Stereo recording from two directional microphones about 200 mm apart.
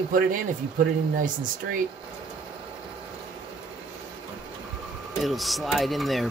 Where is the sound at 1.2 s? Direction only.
40° right (ahead or behind).